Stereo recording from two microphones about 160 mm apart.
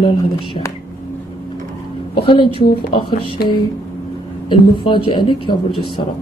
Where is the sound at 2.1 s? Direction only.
30° left (ahead or behind).